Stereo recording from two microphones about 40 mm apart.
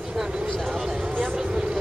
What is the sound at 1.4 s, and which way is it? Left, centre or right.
Vehicle, right.